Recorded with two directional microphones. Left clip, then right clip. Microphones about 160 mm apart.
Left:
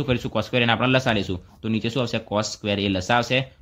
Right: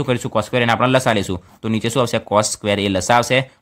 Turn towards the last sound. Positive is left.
turn(degrees=-45)  # may be behind; listen again after turning